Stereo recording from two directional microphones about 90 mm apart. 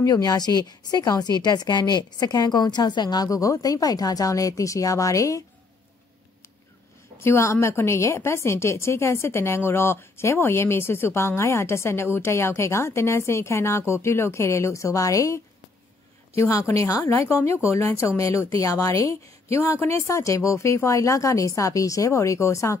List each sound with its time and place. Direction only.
0.0 s a woman's voice: 40° left (ahead or behind)
7.2 s speech: 30° left (ahead or behind)